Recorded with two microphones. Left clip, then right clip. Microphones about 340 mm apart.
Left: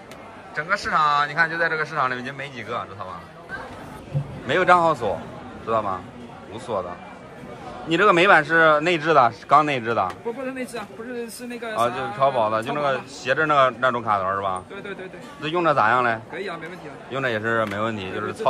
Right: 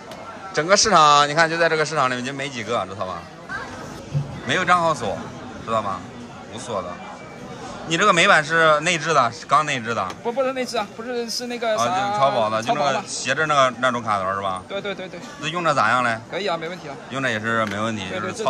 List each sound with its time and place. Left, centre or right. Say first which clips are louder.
0.6 s a man's voice: right 6 dB; centre
4.5 s a man's voice: left 1 dB; centre
6.7 s a man's voice: left 1 dB; centre
7.9 s a man's voice: even; centre
10.4 s speech: right 8 dB; centre
11.8 s a man's voice: even; centre
16.3 s speech: right 7 dB; centre
17.1 s a man's voice: even; centre